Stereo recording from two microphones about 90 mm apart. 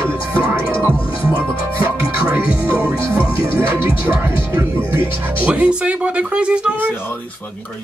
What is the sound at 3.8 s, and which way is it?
Speech, 70° left (ahead or behind).